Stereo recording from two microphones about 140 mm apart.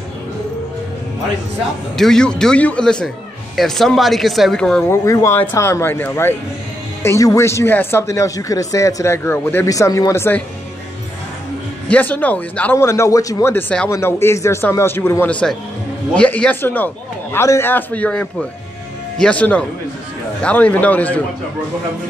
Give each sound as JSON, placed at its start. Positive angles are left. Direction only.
{"t": 2.0, "sound": "speech", "side_deg": 5}
{"t": 4.8, "sound": "speech", "side_deg": 20}
{"t": 11.9, "sound": "speech", "side_deg": 10}